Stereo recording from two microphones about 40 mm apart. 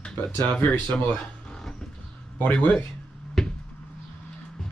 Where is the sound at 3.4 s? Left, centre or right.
Centre.